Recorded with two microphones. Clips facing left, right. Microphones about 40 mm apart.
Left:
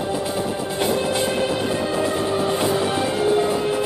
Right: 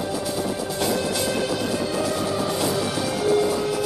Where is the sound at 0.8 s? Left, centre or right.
Left.